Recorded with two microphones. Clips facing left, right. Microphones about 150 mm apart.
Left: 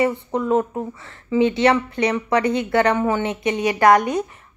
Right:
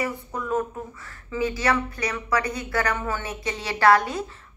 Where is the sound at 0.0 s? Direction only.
25° left (ahead or behind).